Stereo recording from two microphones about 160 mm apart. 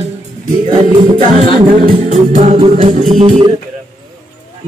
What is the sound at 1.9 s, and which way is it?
Music, 40° right (ahead or behind).